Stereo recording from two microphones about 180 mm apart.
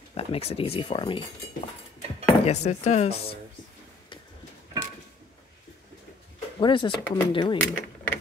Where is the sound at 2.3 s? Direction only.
40° left (ahead or behind).